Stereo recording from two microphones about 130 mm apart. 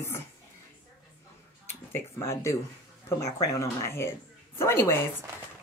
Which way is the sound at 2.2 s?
20° left (ahead or behind).